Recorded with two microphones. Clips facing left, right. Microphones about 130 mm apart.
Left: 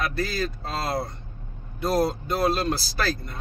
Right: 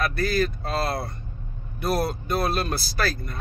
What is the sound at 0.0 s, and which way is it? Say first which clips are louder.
Speech: right 3 dB; 20° left (ahead or behind).